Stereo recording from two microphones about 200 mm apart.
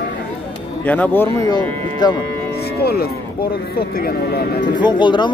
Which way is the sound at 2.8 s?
50° left (ahead or behind).